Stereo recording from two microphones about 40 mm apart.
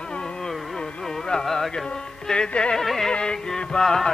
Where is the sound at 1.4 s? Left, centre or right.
Centre.